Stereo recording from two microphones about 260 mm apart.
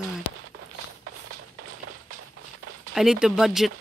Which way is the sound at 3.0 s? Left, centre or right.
Centre.